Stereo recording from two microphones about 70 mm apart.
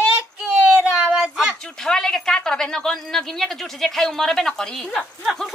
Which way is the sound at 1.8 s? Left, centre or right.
Centre.